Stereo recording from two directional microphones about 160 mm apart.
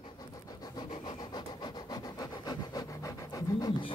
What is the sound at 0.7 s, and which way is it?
Rub, 30° left (ahead or behind).